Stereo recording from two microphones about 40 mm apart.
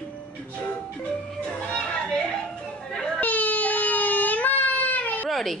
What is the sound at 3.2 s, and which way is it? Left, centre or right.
Baby cry, left.